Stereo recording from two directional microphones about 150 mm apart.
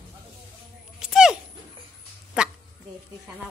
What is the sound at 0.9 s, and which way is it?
Music, 5° right (ahead or behind).